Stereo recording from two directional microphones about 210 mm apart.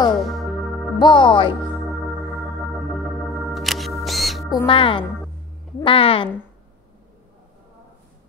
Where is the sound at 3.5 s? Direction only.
Centre (ahead or behind).